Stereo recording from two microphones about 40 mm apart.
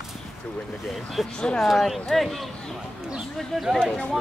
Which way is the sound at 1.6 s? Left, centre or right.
Centre.